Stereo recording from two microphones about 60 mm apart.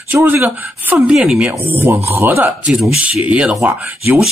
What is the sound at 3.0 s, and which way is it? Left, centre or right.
Speech, right.